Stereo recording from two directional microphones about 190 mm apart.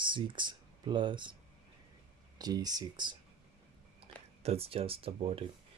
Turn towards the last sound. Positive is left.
turn(degrees=-30)  # may be behind; listen again after turning